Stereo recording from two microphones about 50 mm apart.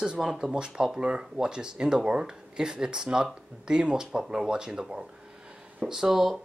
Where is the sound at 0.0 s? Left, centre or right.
Centre.